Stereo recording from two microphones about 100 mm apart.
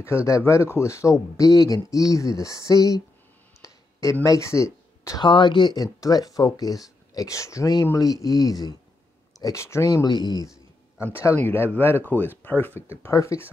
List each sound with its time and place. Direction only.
0.0 s speech: 25° left (ahead or behind)
3.6 s a sound: 30° left (ahead or behind)
5.2 s speech: 50° left (ahead or behind); by 10.0 s 30° left (ahead or behind)
10.0 s speech: 45° left (ahead or behind)
11.0 s speech: 25° left (ahead or behind)
13.1 s speech: 30° left (ahead or behind)